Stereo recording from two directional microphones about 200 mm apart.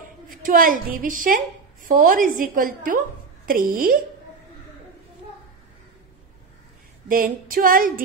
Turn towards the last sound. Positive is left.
turn(degrees=-45)  # may be behind; listen again after turning